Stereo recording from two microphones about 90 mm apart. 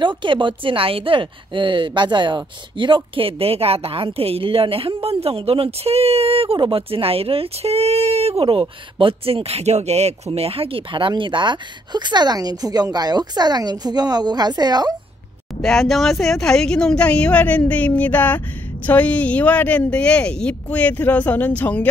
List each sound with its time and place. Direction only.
0.2 s speech: 65° right (ahead or behind); by 15.0 s 50° right (ahead or behind)
15.6 s speech: 5° left (ahead or behind)